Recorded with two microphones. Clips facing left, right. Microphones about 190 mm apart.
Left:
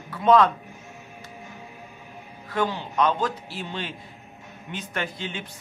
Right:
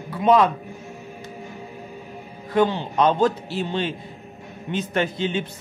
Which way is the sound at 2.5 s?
25° right (ahead or behind).